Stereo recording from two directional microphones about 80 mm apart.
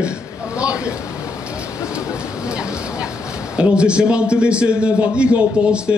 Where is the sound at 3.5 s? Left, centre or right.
Centre.